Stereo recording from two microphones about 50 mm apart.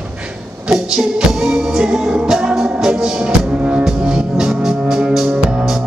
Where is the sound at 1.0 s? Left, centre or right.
Centre.